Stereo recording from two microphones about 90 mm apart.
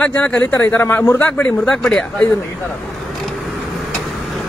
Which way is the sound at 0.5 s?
25° left (ahead or behind).